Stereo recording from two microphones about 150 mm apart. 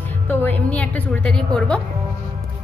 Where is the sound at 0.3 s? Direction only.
15° left (ahead or behind).